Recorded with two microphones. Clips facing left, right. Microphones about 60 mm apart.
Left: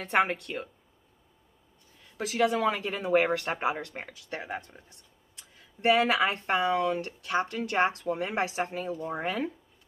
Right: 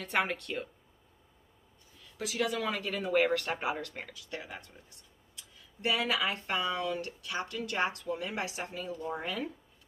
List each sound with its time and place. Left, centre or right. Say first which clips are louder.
0.0 s speech: left 5 dB; left
0.4 s speech: left 1 dB; centre
2.1 s speech: left 6 dB; left